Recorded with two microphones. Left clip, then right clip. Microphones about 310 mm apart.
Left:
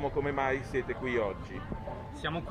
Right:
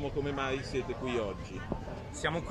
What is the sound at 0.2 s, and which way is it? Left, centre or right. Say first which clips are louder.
Speech: left 3 dB; left.